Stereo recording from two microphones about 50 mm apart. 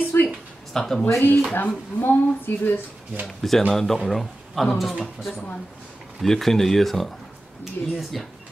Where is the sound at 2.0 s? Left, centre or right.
Left.